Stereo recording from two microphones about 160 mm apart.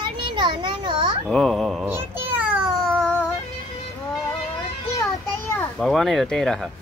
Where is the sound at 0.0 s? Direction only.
30° right (ahead or behind).